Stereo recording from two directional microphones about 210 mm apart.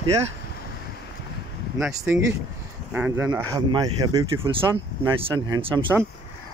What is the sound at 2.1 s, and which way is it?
Speech, 10° right (ahead or behind).